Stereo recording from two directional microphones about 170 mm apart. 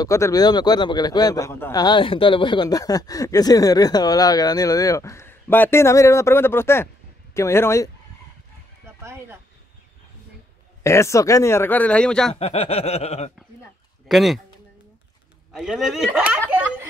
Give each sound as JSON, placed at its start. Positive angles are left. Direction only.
{"t": 0.0, "sound": "a man's voice", "side_deg": 20}
{"t": 9.0, "sound": "speech", "side_deg": -15}
{"t": 10.8, "sound": "a man's voice", "side_deg": 15}
{"t": 12.4, "sound": "a sound", "side_deg": 35}
{"t": 14.0, "sound": "speech", "side_deg": 0}
{"t": 15.5, "sound": "speech", "side_deg": -5}